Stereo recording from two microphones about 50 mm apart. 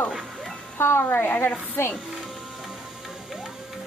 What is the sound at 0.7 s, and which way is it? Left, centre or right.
Speech, left.